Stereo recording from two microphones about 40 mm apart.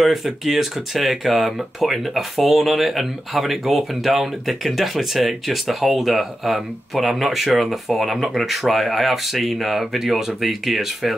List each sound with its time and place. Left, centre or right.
0.0 s speech: centre